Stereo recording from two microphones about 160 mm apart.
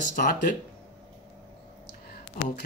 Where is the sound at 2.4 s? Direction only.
55° left (ahead or behind).